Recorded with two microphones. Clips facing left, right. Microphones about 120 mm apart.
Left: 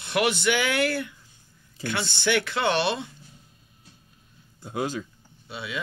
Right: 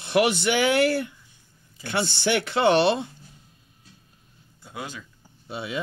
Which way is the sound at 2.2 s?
30° right (ahead or behind).